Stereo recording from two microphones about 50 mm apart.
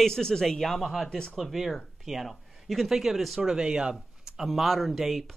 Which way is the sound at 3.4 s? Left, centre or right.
Centre.